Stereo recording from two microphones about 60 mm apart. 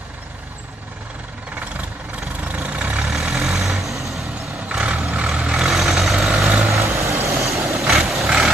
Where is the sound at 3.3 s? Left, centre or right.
Centre.